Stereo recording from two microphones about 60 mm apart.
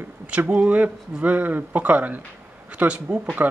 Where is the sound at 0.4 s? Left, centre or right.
Right.